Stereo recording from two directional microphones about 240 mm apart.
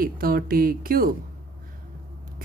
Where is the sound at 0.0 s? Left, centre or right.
Right.